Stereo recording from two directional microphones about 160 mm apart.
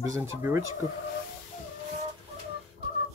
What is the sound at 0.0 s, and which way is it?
Speech, 20° right (ahead or behind).